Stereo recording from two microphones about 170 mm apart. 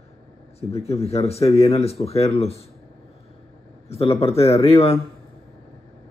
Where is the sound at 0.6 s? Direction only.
35° left (ahead or behind).